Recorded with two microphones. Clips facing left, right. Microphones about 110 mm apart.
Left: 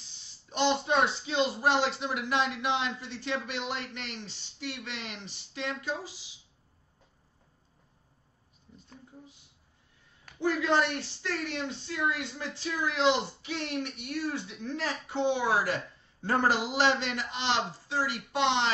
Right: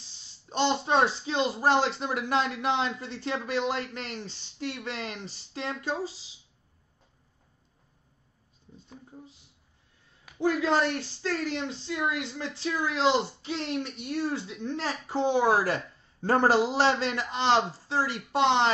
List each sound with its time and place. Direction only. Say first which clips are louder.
0.5 s speech: right 2 dB; 35° right (ahead or behind)
10.4 s a woman's voice: right 2 dB; 25° right (ahead or behind)